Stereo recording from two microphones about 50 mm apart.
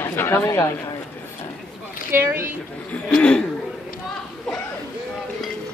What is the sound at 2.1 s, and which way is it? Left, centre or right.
Speech, right.